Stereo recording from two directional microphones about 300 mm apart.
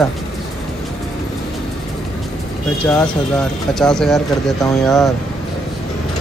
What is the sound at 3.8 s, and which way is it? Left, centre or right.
Speech, centre.